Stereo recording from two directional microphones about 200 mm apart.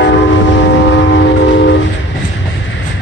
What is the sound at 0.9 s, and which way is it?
Train, 60° left (ahead or behind).